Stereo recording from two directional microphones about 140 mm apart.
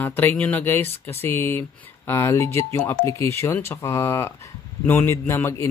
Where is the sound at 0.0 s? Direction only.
10° left (ahead or behind).